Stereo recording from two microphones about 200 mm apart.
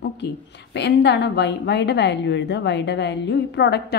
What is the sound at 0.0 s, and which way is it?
A woman's voice, 60° left (ahead or behind).